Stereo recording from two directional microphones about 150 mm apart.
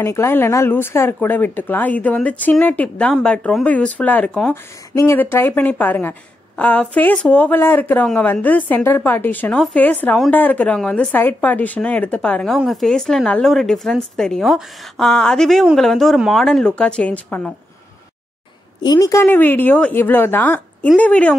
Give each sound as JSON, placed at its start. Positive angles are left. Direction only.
{"t": 0.0, "sound": "a woman's voice", "side_deg": 15}
{"t": 18.8, "sound": "a woman's voice", "side_deg": 25}
{"t": 19.2, "sound": "a woman's voice", "side_deg": 15}